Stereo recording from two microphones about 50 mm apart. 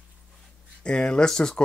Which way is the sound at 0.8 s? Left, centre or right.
Centre.